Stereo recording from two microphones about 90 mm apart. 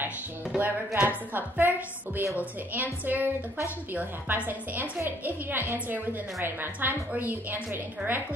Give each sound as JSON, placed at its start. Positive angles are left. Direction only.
{"t": 0.6, "sound": "a woman's voice", "side_deg": -20}